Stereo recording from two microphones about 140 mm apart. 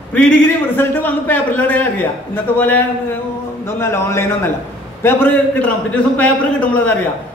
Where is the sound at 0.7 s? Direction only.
15° left (ahead or behind).